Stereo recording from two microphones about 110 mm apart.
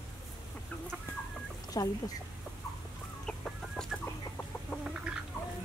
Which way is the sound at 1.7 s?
35° left (ahead or behind).